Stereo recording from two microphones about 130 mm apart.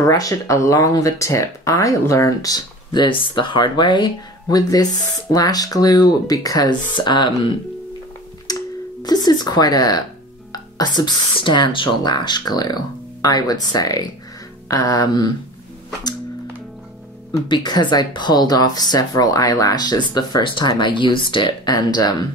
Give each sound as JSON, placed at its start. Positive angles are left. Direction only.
{"t": 0.0, "sound": "speech", "side_deg": 25}
{"t": 8.5, "sound": "a sound", "side_deg": 30}
{"t": 9.0, "sound": "speech", "side_deg": 30}
{"t": 17.5, "sound": "speech", "side_deg": 35}